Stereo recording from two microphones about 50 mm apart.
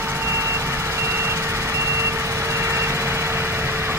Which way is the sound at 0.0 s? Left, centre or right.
Right.